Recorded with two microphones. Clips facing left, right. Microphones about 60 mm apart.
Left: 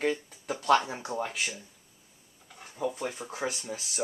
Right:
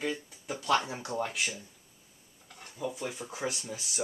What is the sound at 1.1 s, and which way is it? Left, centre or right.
Speech, centre.